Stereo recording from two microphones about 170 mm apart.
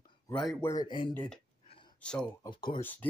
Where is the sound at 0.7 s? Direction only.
25° left (ahead or behind).